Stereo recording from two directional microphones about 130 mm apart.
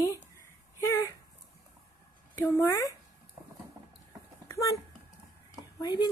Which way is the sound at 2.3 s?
20° left (ahead or behind).